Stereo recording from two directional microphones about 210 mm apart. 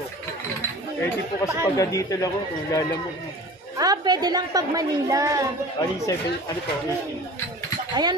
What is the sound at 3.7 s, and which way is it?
Speech, 15° right (ahead or behind).